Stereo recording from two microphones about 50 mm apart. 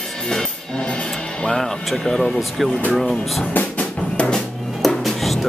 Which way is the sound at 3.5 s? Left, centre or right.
Left.